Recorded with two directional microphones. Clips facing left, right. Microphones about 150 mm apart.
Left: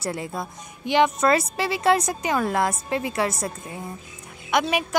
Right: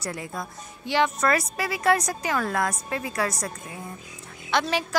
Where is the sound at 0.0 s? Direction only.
25° left (ahead or behind).